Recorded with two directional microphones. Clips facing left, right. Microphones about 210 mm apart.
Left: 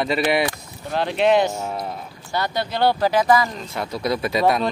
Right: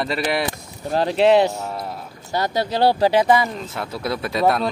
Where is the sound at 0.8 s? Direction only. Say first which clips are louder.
Right 3 dB; 35° right (ahead or behind).